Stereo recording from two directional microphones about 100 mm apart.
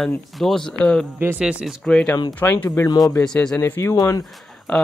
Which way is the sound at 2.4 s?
30° left (ahead or behind).